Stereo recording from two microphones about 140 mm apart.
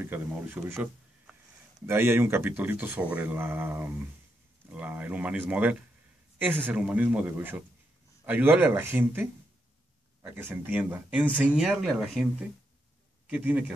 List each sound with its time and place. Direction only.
0.0 s speech: 15° right (ahead or behind)
1.9 s speech: 15° right (ahead or behind)